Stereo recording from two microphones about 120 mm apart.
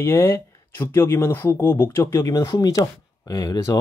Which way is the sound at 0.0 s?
20° left (ahead or behind).